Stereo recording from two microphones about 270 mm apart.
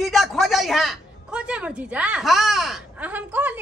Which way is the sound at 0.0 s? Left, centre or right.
Centre.